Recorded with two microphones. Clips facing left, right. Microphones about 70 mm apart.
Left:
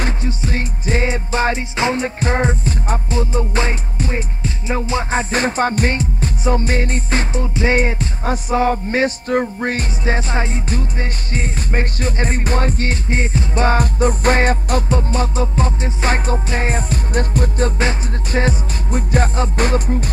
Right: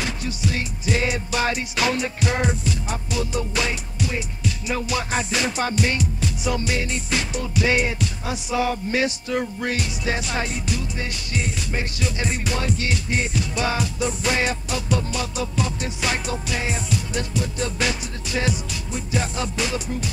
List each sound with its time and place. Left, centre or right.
0.0 s music: left